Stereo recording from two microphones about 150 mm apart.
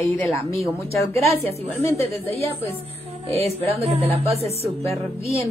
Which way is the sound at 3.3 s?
45° right (ahead or behind).